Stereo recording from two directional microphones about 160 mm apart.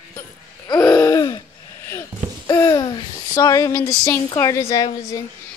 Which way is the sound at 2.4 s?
25° left (ahead or behind).